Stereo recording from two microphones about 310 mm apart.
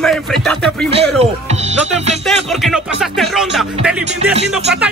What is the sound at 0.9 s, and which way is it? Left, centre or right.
Speech, centre.